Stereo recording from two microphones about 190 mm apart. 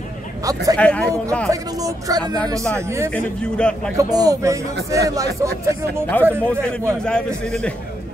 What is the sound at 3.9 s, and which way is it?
Speech, 20° right (ahead or behind).